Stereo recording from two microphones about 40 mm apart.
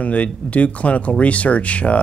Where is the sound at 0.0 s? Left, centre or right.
Left.